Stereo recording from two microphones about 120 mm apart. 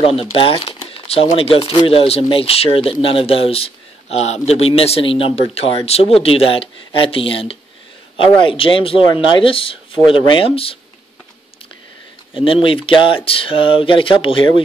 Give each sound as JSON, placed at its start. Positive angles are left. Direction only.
{"t": 0.0, "sound": "speech", "side_deg": 50}
{"t": 12.4, "sound": "speech", "side_deg": 50}